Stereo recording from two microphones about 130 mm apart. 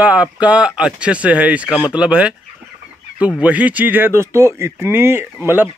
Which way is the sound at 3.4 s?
10° right (ahead or behind).